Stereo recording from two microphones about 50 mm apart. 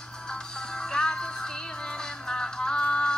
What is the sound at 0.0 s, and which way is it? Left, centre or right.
Music, centre.